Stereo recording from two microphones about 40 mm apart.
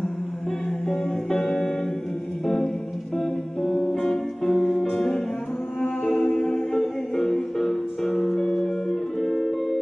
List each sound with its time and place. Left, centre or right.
0.8 s music: centre
6.2 s music: left; by 9.8 s centre